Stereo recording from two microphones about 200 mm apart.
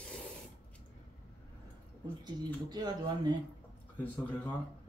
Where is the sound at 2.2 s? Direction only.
20° right (ahead or behind).